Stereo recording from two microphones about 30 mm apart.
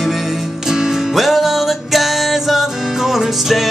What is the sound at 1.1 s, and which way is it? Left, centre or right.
Music, centre.